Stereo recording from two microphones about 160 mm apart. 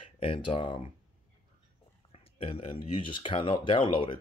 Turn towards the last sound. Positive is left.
turn(degrees=35)  # may be behind; listen again after turning